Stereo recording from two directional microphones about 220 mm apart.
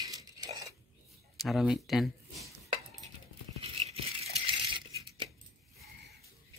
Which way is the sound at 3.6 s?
25° right (ahead or behind).